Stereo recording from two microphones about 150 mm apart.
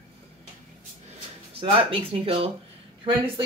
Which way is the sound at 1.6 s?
35° right (ahead or behind).